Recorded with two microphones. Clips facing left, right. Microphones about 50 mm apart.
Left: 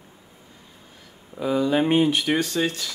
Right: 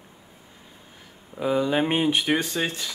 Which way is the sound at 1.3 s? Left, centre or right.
Centre.